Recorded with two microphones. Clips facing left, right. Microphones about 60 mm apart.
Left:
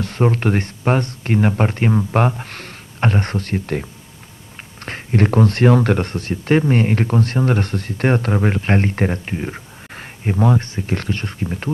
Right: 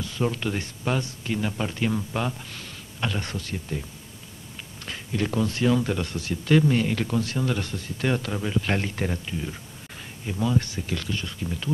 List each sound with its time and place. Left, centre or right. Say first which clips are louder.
0.0 s speech: left 8 dB; left
2.1 s speech: left 10 dB; left
4.8 s speech: left 9 dB; left
10.6 s speech: left 7 dB; left